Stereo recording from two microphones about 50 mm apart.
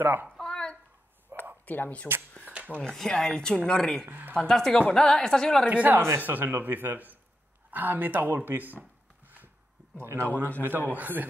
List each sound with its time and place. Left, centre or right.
0.0 s a man's voice: right
0.4 s a sound: centre
1.3 s a sound: right
1.7 s speech: left
2.4 s a sound: right
2.9 s speech: centre
4.1 s speech: right
4.5 s speech: centre
5.7 s speech: right
6.1 s speech: right
9.2 s a sound: right
9.9 s speech: right
10.6 s a man's voice: right